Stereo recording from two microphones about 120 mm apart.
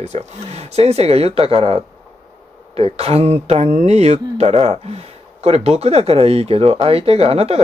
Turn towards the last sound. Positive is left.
turn(degrees=-55)  # may be behind; listen again after turning